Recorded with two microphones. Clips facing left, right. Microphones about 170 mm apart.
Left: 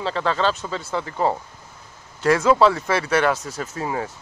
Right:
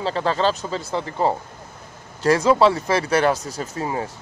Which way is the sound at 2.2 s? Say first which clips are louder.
Even; 35° right (ahead or behind).